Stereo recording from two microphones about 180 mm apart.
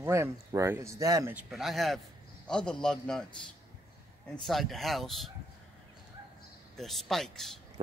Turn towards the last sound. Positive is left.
turn(degrees=0)  # may be behind; listen again after turning